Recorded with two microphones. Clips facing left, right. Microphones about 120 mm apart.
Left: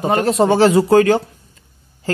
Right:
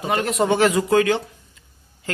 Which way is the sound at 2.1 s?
35° left (ahead or behind).